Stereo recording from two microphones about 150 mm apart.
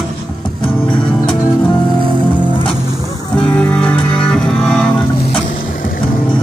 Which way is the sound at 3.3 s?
10° left (ahead or behind).